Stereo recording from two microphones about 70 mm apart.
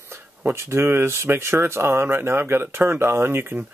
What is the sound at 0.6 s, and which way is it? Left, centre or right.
Speech, right.